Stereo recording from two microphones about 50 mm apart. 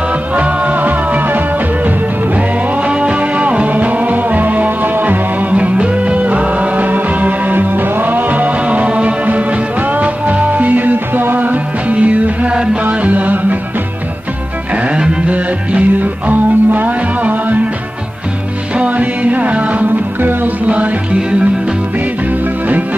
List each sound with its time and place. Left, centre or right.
0.3 s music: right
14.8 s music: right
18.9 s music: right